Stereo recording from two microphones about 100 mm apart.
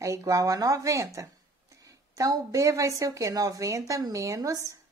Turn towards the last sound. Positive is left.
turn(degrees=-35)  # may be behind; listen again after turning